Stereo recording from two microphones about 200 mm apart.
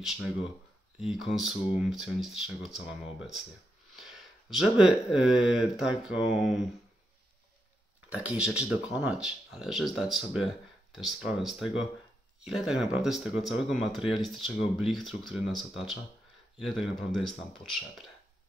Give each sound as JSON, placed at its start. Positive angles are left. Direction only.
{"t": 0.0, "sound": "speech", "side_deg": 0}
{"t": 8.2, "sound": "speech", "side_deg": -5}